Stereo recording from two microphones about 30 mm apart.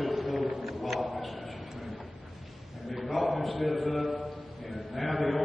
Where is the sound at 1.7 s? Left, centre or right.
Centre.